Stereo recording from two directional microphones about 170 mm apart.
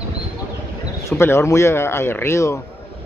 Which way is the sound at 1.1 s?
15° left (ahead or behind).